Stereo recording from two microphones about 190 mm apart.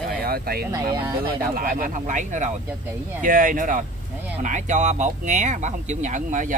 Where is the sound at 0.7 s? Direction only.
15° right (ahead or behind).